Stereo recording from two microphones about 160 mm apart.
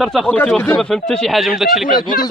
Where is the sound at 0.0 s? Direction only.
Centre (ahead or behind).